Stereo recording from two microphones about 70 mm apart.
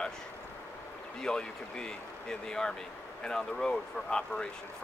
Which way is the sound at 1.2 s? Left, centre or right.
Centre.